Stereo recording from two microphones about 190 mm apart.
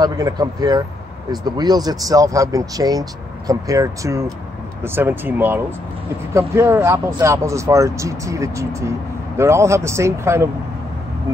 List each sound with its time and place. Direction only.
0.0 s speech: 20° right (ahead or behind)